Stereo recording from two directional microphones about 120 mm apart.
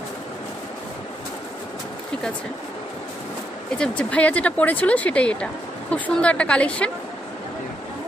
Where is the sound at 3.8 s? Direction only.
10° left (ahead or behind).